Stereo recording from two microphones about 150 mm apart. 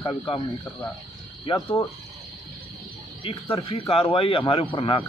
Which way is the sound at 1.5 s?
35° left (ahead or behind).